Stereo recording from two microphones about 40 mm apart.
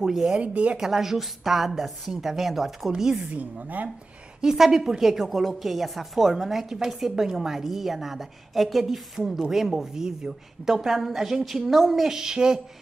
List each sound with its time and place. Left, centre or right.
0.0 s a woman's voice: centre
0.4 s speech: right
0.7 s a woman's voice: centre
3.2 s a woman's voice: right
4.4 s a woman's voice: centre